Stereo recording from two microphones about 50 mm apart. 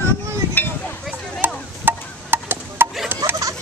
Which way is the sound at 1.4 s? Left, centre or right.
Right.